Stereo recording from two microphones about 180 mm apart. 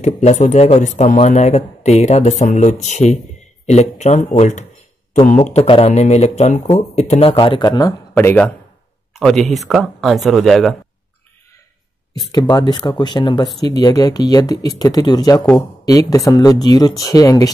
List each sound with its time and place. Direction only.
0.0 s speech: 40° left (ahead or behind); by 7.9 s 25° left (ahead or behind)
8.1 s speech: 10° left (ahead or behind)
12.3 s speech: 20° left (ahead or behind)